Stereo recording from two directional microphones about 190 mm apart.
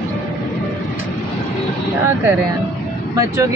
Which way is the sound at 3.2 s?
15° right (ahead or behind).